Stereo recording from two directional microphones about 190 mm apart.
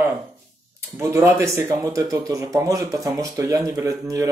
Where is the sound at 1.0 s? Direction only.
15° right (ahead or behind).